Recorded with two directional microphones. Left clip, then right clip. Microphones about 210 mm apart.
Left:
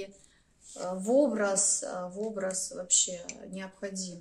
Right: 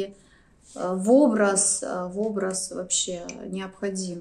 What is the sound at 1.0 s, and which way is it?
A woman's voice, 30° right (ahead or behind).